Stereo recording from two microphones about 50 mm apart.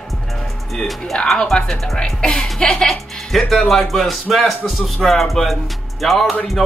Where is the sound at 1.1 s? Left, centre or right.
Centre.